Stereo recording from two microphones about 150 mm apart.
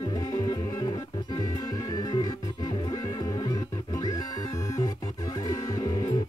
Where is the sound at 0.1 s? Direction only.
20° left (ahead or behind).